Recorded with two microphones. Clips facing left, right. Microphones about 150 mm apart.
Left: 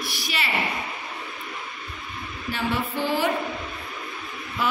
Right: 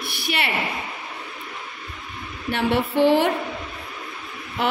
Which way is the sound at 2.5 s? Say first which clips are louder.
Right 6 dB; 65° right (ahead or behind).